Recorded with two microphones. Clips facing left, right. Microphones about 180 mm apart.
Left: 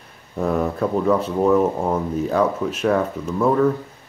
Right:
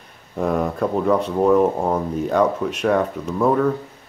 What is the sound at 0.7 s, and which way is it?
Speech, 5° left (ahead or behind).